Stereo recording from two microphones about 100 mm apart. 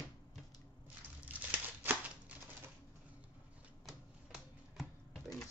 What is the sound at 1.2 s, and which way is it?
Crumpling, 15° right (ahead or behind).